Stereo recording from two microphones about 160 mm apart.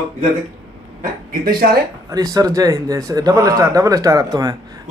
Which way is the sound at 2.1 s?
20° right (ahead or behind).